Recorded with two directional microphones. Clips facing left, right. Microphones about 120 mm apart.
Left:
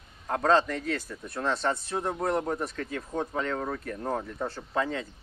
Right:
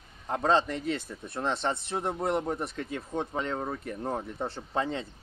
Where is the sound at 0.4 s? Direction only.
20° right (ahead or behind).